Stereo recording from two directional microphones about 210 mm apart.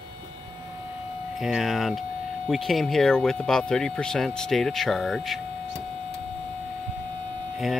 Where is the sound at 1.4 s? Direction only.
Centre (ahead or behind).